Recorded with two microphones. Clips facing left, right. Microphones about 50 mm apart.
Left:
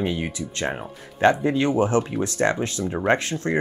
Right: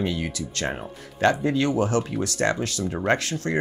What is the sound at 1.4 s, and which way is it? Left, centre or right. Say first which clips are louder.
Speech: left 2 dB; left.